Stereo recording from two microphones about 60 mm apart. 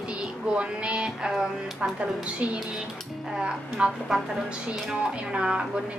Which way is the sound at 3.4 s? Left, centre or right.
Centre.